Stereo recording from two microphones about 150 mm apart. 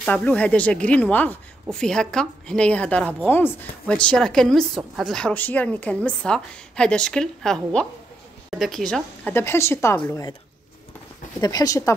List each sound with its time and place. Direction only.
0.0 s a woman's voice: 10° left (ahead or behind)
9.3 s speech: 15° left (ahead or behind)
11.4 s speech: 25° left (ahead or behind)